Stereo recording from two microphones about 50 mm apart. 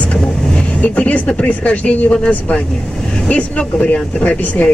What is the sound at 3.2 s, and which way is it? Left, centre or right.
Speech, left.